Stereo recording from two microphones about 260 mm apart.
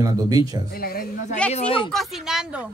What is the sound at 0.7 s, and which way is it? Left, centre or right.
Speech, left.